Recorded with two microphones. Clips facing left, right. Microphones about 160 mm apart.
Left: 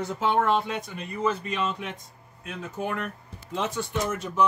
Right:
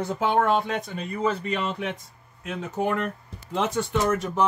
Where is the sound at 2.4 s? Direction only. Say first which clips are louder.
Right 5 dB; 85° right.